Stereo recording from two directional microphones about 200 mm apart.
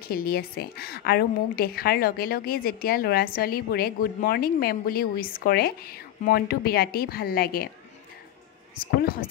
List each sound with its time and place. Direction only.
0.1 s a woman's voice: 50° left (ahead or behind)
9.0 s a woman's voice: 45° left (ahead or behind)